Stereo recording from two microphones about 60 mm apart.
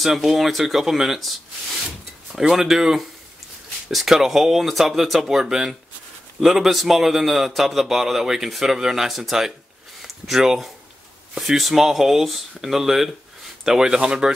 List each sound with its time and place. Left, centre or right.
0.0 s a man's voice: centre
2.5 s a man's voice: centre